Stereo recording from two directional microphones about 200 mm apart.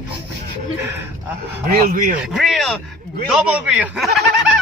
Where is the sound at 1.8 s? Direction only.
45° right (ahead or behind).